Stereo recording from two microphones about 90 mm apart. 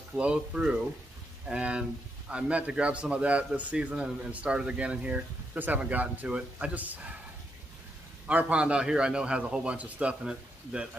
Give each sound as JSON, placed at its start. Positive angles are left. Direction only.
{"t": 0.1, "sound": "speech", "side_deg": -10}
{"t": 8.3, "sound": "speech", "side_deg": -15}